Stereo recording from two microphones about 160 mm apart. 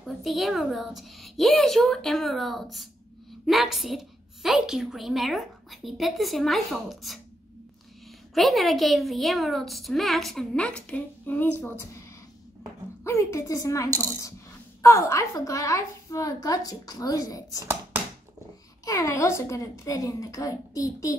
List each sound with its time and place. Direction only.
0.0 s a woman's voice: centre (ahead or behind)
8.4 s a woman's voice: centre (ahead or behind)
13.0 s a woman's voice: 20° left (ahead or behind)
18.9 s a woman's voice: 20° left (ahead or behind)